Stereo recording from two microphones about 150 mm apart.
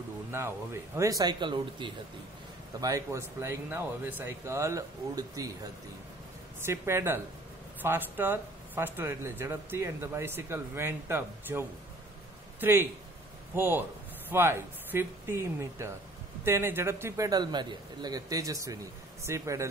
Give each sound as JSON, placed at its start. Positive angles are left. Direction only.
{"t": 0.9, "sound": "a man's voice", "side_deg": -20}
{"t": 2.8, "sound": "a man's voice", "side_deg": -20}